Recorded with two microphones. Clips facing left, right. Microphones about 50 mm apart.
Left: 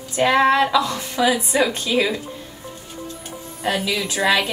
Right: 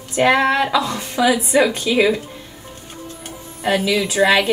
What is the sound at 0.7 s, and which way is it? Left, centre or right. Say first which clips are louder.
A woman's voice: even; right.